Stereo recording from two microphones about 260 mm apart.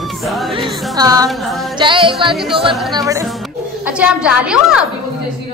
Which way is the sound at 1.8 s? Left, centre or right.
Centre.